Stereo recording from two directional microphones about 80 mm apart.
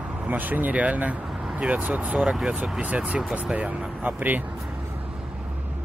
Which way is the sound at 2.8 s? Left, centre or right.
Centre.